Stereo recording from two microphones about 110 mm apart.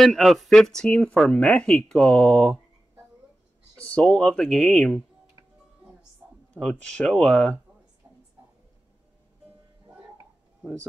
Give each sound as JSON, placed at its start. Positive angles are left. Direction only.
{"t": 0.0, "sound": "speech", "side_deg": 0}
{"t": 3.7, "sound": "speech", "side_deg": 10}
{"t": 6.5, "sound": "speech", "side_deg": 10}